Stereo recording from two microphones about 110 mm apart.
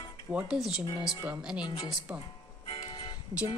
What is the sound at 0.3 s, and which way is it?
Speech, 10° right (ahead or behind).